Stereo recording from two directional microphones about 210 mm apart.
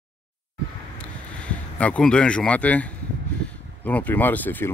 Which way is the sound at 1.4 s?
5° left (ahead or behind).